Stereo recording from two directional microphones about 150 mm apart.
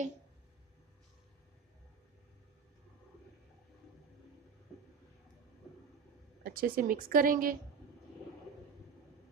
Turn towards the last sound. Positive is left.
turn(degrees=-65)  # may be behind; listen again after turning